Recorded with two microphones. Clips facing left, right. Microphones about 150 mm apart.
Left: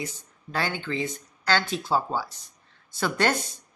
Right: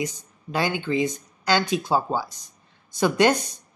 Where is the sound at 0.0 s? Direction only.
15° right (ahead or behind).